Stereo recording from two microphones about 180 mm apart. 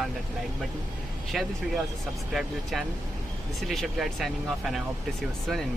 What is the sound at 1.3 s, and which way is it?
Speech, centre (ahead or behind).